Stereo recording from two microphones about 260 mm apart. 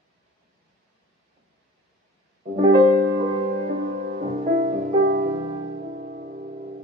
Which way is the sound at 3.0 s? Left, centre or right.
Right.